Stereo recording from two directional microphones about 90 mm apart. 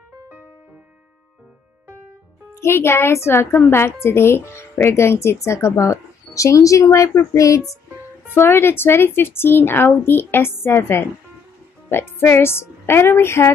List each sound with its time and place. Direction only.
2.5 s a woman's voice: 30° left (ahead or behind)
8.4 s a woman's voice: 25° left (ahead or behind)